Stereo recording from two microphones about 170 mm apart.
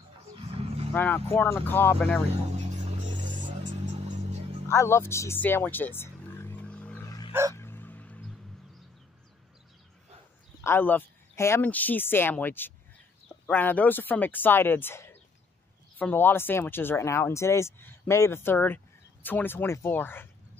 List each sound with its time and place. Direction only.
0.4 s vehicle: 35° right (ahead or behind)
0.9 s speech: 10° left (ahead or behind)
2.5 s music: 40° right (ahead or behind)
4.6 s music: 15° left (ahead or behind)
7.1 s dog: 25° left (ahead or behind)
7.5 s fowl: 15° left (ahead or behind)
10.6 s speech: 15° left (ahead or behind)